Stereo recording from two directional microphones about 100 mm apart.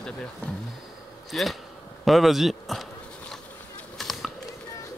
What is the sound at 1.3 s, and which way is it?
Speech, centre (ahead or behind).